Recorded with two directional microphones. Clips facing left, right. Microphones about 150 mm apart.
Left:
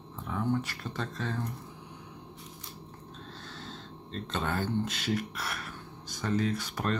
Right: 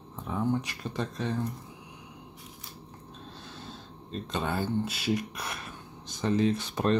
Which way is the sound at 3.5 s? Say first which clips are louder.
Even; 10° right (ahead or behind).